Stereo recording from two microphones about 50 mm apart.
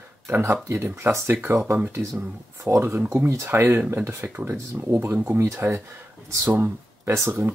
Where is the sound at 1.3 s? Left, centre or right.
Right.